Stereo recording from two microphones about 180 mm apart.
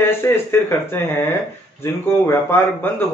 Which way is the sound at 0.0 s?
10° left (ahead or behind).